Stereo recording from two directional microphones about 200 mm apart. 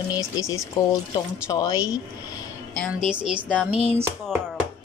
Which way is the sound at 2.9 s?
5° right (ahead or behind).